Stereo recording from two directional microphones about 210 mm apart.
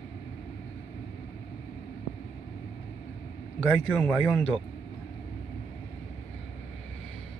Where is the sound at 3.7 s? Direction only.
5° left (ahead or behind).